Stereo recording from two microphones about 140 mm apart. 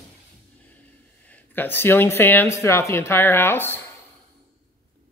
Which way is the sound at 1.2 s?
10° left (ahead or behind).